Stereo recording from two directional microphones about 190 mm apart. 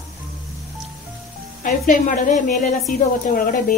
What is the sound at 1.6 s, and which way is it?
A woman's voice, 45° left (ahead or behind).